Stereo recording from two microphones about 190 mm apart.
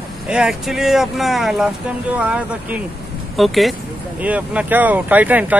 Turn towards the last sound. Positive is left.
turn(degrees=-10)  # may be behind; listen again after turning